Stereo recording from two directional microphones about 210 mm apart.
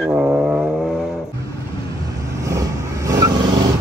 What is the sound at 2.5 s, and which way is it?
Vehicle, 15° right (ahead or behind).